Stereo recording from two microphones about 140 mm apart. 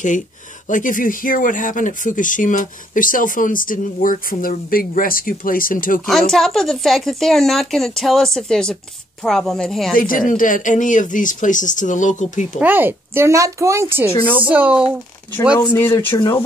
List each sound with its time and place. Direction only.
0.7 s speech: 70° left (ahead or behind)
6.0 s a woman's voice: centre (ahead or behind)
9.9 s speech: 80° left; by 12.4 s 60° left (ahead or behind)
12.5 s speech: 15° right (ahead or behind)
14.0 s a woman's voice: 30° left (ahead or behind)
14.4 s speech: 10° right (ahead or behind)
16.1 s speech: 35° left (ahead or behind)